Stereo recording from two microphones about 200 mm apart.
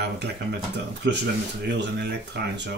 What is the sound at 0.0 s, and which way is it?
Speech, 55° right (ahead or behind).